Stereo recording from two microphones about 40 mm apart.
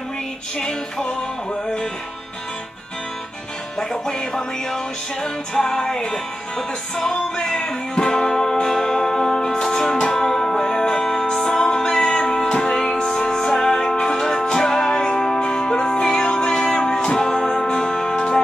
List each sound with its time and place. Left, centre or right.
0.6 s music: centre
3.9 s music: centre